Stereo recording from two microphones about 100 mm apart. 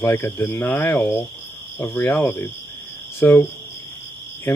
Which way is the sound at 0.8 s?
25° left (ahead or behind).